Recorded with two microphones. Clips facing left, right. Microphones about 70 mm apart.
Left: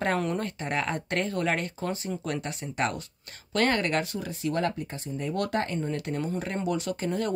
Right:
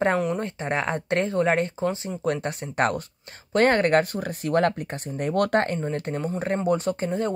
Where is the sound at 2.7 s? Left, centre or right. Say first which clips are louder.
Right 6 dB; right.